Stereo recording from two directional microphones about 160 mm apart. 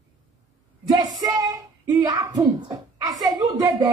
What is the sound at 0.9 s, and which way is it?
Speech, 25° right (ahead or behind).